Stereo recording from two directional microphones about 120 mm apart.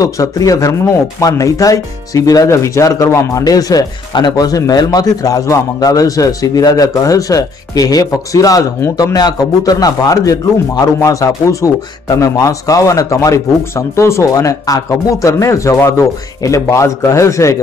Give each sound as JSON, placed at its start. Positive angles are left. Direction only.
{"t": 0.0, "sound": "speech", "side_deg": 30}